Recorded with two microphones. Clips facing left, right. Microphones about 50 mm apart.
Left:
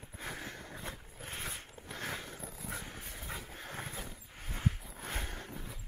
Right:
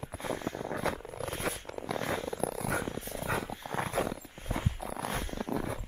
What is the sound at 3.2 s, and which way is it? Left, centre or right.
Dog, right.